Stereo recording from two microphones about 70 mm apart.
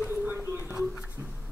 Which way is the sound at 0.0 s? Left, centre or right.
Right.